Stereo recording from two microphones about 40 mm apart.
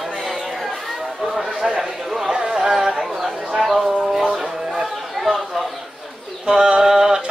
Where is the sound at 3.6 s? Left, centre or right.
Centre.